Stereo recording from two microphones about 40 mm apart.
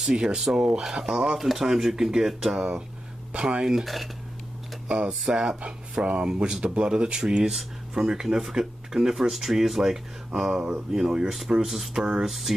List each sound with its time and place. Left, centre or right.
0.0 s speech: right
3.8 s speech: centre
4.8 s speech: right; by 12.5 s centre